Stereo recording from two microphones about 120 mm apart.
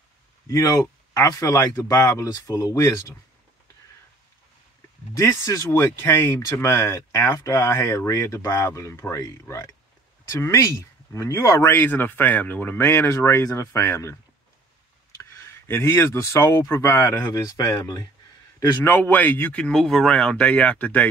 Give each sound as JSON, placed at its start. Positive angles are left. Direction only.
{"t": 0.5, "sound": "speech", "side_deg": 30}
{"t": 5.1, "sound": "speech", "side_deg": 25}
{"t": 15.2, "sound": "speech", "side_deg": 20}
{"t": 18.9, "sound": "a man's voice", "side_deg": 15}